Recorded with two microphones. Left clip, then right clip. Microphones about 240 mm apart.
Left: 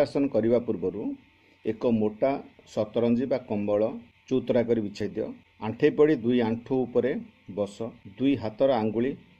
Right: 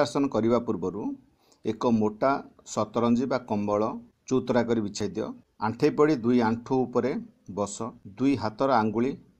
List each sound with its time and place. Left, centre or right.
0.0 s speech: right